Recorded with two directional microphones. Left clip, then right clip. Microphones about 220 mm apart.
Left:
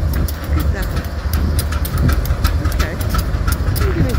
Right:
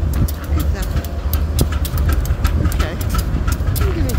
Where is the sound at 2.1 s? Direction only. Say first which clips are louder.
Left 3 dB; 45° left (ahead or behind).